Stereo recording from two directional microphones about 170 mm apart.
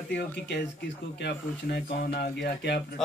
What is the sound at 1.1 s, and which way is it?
Speech, 90° left.